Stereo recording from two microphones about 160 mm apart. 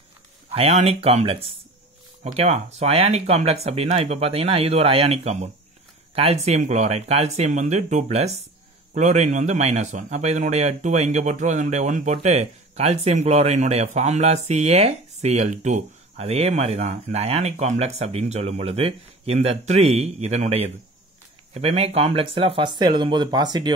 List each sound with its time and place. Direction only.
0.5 s a man's voice: 40° right (ahead or behind)